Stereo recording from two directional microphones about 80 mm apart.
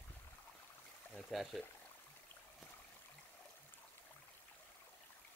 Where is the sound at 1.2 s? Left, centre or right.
Centre.